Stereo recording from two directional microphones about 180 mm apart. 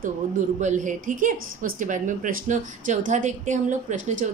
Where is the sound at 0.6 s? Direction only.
45° right (ahead or behind).